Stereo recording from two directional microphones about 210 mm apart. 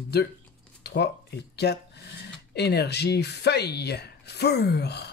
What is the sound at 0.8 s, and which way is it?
Speech, 50° left (ahead or behind).